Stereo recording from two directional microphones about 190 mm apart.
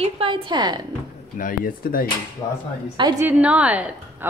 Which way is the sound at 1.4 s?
50° left (ahead or behind).